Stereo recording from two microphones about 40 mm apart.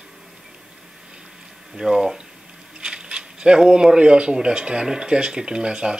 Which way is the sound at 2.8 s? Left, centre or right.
Right.